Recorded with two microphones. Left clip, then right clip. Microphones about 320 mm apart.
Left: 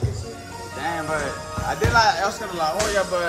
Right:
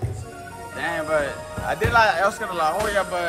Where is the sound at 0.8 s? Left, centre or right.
Right.